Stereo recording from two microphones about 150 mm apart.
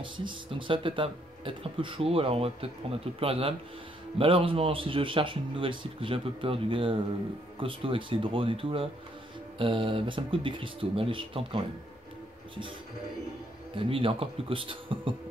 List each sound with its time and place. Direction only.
0.0 s speech: 35° right (ahead or behind)
13.7 s speech: 35° right (ahead or behind)